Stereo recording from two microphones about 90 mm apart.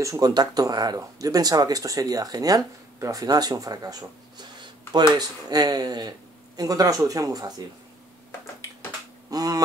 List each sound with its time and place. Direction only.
0.0 s speech: 40° right (ahead or behind)
9.3 s speech: 45° right (ahead or behind)